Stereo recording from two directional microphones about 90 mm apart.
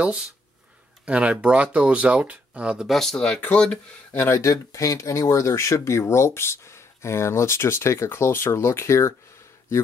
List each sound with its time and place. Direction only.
0.0 s speech: 10° right (ahead or behind)
2.9 s speech: 5° left (ahead or behind)
4.2 s speech: 30° left (ahead or behind)